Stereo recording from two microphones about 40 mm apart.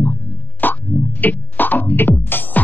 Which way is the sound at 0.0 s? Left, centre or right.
Left.